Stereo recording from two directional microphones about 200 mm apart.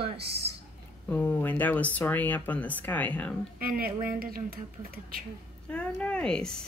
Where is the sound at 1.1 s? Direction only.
10° left (ahead or behind).